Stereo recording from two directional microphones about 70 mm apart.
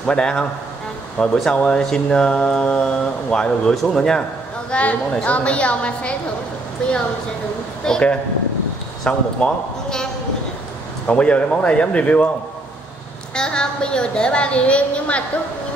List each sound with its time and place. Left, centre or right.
0.0 s speech: centre
7.8 s speech: centre
11.1 s speech: centre
13.3 s speech: centre